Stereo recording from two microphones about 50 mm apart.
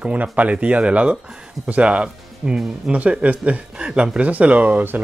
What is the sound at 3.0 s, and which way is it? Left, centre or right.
Speech, right.